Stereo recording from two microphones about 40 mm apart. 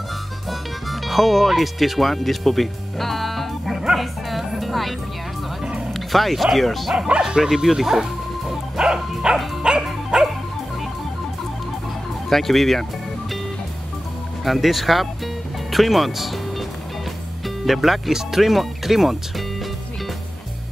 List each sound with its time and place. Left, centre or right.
0.5 s music: centre
5.9 s speech: centre
7.2 s speech: centre
8.7 s bow-wow: centre
9.6 s music: right
12.3 s speech: centre
14.4 s speech: centre
17.6 s speech: centre